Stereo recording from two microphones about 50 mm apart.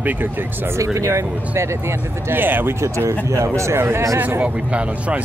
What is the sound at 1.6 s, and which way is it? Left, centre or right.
Speech, right.